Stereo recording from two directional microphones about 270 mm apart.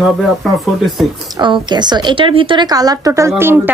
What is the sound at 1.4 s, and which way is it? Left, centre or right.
A woman's voice, centre.